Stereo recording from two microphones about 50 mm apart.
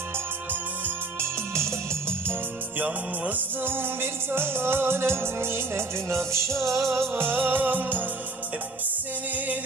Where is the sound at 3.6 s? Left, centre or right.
Right.